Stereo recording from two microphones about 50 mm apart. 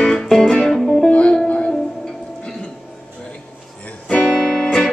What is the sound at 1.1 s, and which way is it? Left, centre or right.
Music, centre.